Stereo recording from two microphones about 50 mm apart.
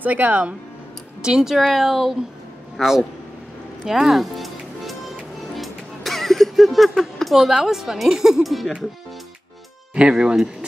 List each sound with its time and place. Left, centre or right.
0.0 s speech: right
1.2 s speech: centre
1.6 s speech: centre
2.8 s speech: centre
3.8 s music: centre
5.6 s speech: centre
9.9 s speech: centre